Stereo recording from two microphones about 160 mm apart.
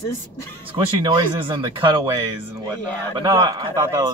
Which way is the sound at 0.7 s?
30° right (ahead or behind).